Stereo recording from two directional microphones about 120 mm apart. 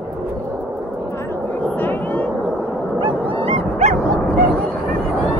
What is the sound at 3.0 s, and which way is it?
Dog, 50° right (ahead or behind).